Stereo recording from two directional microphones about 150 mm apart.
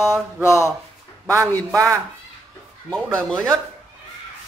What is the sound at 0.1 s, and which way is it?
Speech, 20° left (ahead or behind).